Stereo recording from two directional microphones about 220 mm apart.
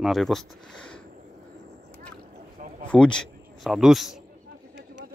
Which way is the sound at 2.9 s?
5° left (ahead or behind).